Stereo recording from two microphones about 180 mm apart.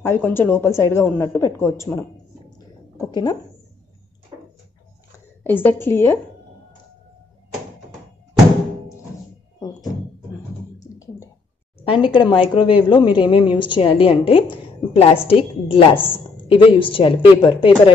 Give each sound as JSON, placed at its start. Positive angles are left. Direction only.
{"t": 0.0, "sound": "speech", "side_deg": 15}
{"t": 3.1, "sound": "a woman's voice", "side_deg": 25}
{"t": 5.4, "sound": "speech", "side_deg": 10}
{"t": 10.8, "sound": "a sound", "side_deg": 20}
{"t": 11.8, "sound": "a woman's voice", "side_deg": 30}